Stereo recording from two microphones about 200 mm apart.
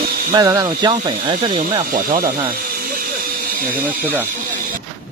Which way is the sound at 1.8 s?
45° right (ahead or behind).